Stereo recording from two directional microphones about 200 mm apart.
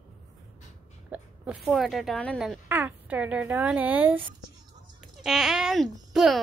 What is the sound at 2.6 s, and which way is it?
A woman's voice, 10° right (ahead or behind).